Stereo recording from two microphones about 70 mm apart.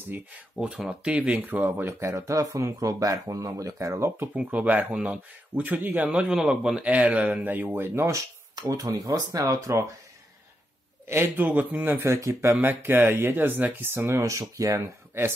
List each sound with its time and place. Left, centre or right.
0.6 s speech: centre
1.9 s speech: right
4.5 s speech: right
6.0 s a man's voice: centre
7.9 s speech: right
8.5 s speech: right
11.1 s speech: right
12.0 s speech: right
14.4 s speech: right